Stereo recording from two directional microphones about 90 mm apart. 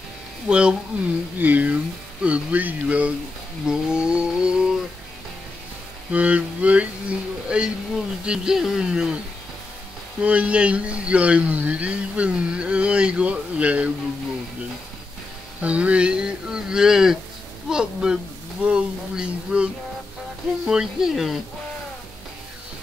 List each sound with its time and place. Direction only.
0.5 s speech: 10° right (ahead or behind)
6.1 s speech: 15° right (ahead or behind)
10.2 s speech: 15° right (ahead or behind)
15.6 s speech: 15° right (ahead or behind)